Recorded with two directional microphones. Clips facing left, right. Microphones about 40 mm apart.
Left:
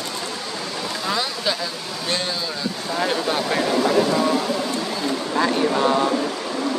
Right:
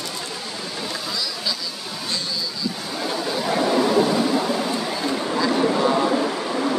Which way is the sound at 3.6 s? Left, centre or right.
Centre.